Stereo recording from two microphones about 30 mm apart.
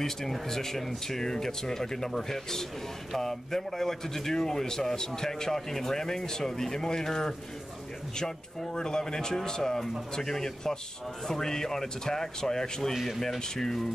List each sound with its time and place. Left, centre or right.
0.0 s a man's voice: centre
8.7 s a man's voice: left
12.9 s speech: centre
13.3 s a man's voice: centre